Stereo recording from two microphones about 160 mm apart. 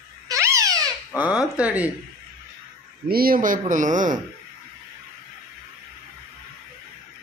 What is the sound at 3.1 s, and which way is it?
Speech, 65° right (ahead or behind).